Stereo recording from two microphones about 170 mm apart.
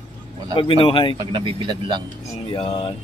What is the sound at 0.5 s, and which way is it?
Speech, 30° left (ahead or behind).